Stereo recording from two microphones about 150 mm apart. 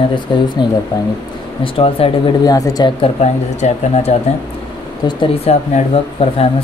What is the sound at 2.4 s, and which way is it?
Speech, 25° left (ahead or behind).